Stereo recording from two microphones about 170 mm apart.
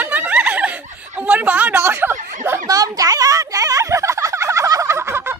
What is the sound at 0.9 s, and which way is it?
Speech, 10° right (ahead or behind).